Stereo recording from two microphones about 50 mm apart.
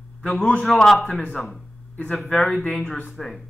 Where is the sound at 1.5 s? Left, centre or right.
Left.